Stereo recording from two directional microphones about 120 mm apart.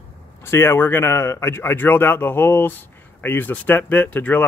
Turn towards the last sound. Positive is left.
turn(degrees=15)  # may be behind; listen again after turning